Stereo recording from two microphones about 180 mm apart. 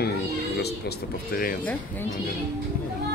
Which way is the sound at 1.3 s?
55° left (ahead or behind).